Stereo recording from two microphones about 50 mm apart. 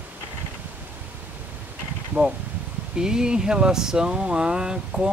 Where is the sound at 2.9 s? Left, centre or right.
Centre.